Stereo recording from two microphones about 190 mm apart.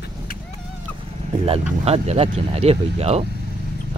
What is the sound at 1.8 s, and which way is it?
Speech, 35° right (ahead or behind).